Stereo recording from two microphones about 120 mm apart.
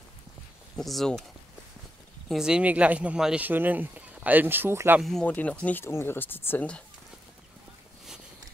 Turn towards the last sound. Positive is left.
turn(degrees=10)  # may be behind; listen again after turning